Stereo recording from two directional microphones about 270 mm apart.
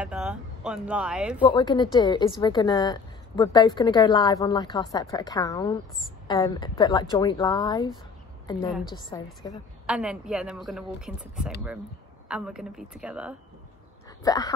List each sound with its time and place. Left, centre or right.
0.0 s a sound: centre
1.4 s a woman's voice: centre
9.8 s speech: centre
14.2 s a woman's voice: centre